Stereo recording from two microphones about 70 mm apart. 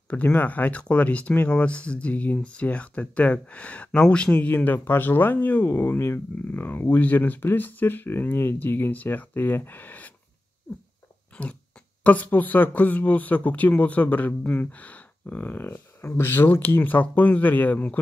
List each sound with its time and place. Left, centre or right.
0.1 s speech: left
11.3 s a sound: centre
12.0 s speech: left